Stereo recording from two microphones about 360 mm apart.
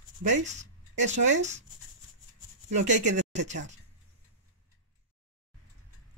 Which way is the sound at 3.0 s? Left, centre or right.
Centre.